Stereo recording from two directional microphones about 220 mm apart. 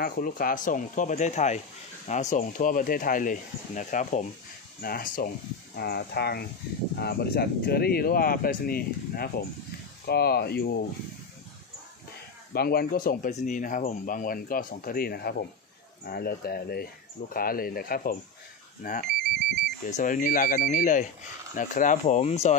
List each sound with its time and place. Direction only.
0.0 s speech: 40° left (ahead or behind)
12.5 s speech: 45° left (ahead or behind)